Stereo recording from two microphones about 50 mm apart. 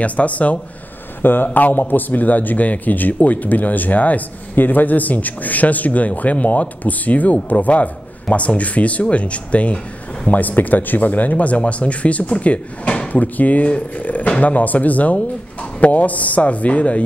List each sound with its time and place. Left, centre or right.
0.0 s speech: left
1.2 s speech: left
13.1 s speech: left